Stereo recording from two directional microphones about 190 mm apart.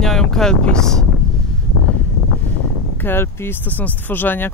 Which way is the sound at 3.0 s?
10° left (ahead or behind).